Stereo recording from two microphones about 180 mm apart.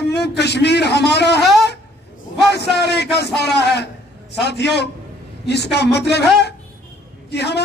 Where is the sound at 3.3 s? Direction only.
65° left (ahead or behind).